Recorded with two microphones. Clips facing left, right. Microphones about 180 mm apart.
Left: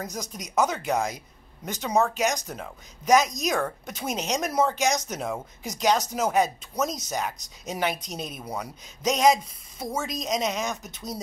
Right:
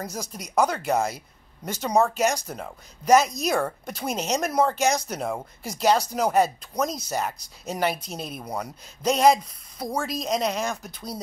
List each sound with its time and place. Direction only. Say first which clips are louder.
0.0 s speech: right 1 dB; centre (ahead or behind)